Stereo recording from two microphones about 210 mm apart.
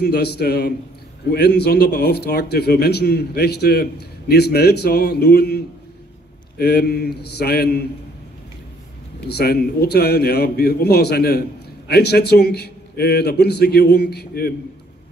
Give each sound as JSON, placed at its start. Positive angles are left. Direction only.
{"t": 0.0, "sound": "a man's voice", "side_deg": 50}
{"t": 6.6, "sound": "a man's voice", "side_deg": 50}
{"t": 9.2, "sound": "a man's voice", "side_deg": 50}